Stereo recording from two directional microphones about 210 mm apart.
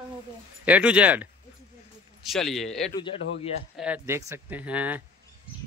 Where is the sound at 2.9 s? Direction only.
20° left (ahead or behind).